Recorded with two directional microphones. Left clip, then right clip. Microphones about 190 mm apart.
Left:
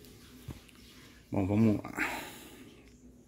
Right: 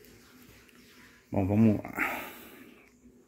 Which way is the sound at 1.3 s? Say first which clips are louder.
Right 3 dB; centre (ahead or behind).